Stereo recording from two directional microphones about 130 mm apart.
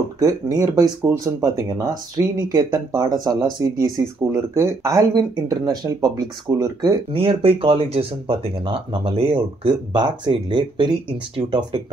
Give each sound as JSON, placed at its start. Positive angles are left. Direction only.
{"t": 0.2, "sound": "speech", "side_deg": -30}
{"t": 7.1, "sound": "speech", "side_deg": -45}